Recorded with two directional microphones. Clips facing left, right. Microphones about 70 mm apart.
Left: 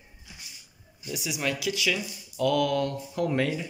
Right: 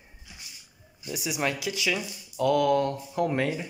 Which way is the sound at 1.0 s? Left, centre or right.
Right.